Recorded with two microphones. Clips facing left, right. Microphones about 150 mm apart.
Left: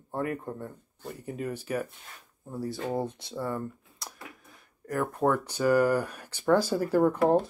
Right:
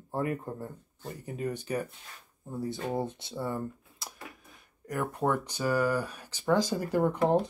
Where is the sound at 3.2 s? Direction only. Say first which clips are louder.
Left 1 dB; 25° right (ahead or behind).